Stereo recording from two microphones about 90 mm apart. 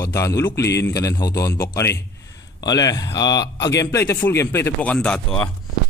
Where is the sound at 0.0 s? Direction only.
35° left (ahead or behind).